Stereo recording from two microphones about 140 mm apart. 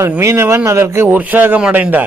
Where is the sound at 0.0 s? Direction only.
20° right (ahead or behind).